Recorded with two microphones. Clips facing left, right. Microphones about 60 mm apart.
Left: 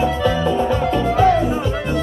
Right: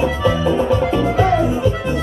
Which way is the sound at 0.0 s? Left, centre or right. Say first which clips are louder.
Right 1 dB; centre.